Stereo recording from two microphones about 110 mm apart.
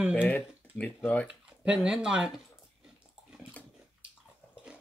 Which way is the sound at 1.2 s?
10° right (ahead or behind).